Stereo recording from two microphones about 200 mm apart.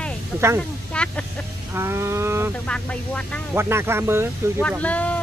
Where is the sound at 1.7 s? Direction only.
10° right (ahead or behind).